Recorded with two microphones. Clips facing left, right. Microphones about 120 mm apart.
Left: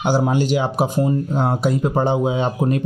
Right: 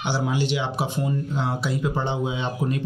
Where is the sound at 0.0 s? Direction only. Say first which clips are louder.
Left 7 dB; 45° left (ahead or behind).